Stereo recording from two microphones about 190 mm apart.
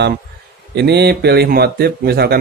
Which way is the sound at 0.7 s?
60° right (ahead or behind).